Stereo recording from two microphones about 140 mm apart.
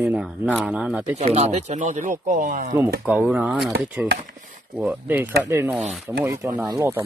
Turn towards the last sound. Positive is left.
turn(degrees=-25)  # may be behind; listen again after turning